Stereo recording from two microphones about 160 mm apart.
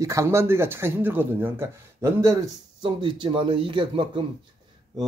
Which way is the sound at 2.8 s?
30° right (ahead or behind).